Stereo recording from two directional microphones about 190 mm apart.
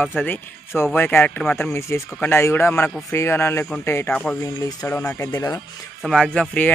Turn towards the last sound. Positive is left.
turn(degrees=5)  # may be behind; listen again after turning